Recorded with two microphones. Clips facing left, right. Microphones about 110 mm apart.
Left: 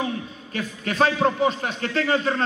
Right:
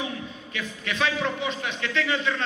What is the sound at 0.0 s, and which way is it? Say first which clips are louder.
A man's voice: left 5 dB; 40° left (ahead or behind).